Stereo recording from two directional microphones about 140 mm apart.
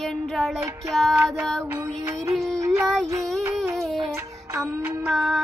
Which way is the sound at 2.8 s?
Centre (ahead or behind).